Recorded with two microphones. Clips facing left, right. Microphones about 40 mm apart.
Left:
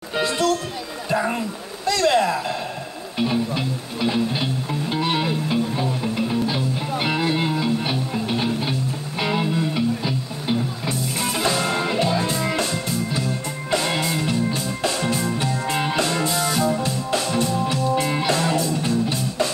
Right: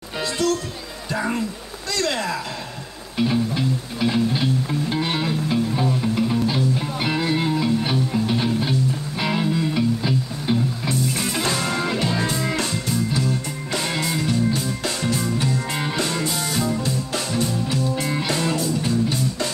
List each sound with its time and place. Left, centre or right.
0.1 s music: left
1.9 s a sound: left
3.3 s music: centre
7.0 s music: centre
10.9 s music: centre
14.2 s music: left
15.6 s music: centre
16.6 s music: left